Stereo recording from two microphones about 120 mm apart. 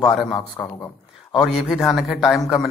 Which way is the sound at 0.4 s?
30° left (ahead or behind).